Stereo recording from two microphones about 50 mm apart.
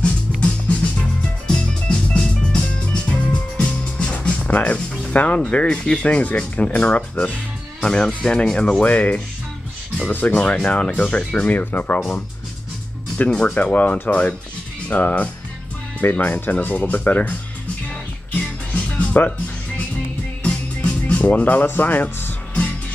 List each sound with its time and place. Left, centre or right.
0.3 s music: centre
1.5 s music: centre
4.5 s speech: left
8.8 s speech: left
11.5 s speech: left
13.3 s speech: left
13.6 s speech: left
14.9 s speech: left
18.9 s music: left
20.4 s music: left